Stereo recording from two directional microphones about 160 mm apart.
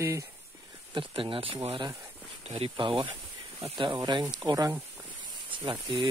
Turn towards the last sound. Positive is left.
turn(degrees=-30)  # may be behind; listen again after turning